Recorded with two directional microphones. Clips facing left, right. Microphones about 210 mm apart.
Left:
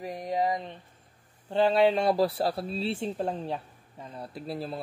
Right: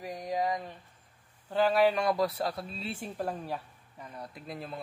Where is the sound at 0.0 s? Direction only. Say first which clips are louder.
Left 3 dB; 25° left (ahead or behind).